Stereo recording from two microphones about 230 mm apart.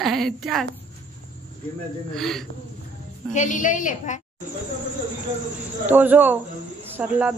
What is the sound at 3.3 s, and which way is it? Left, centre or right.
Speech, left.